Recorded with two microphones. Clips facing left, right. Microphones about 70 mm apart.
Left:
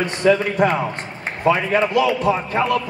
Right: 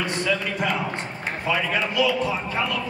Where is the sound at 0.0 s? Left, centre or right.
Left.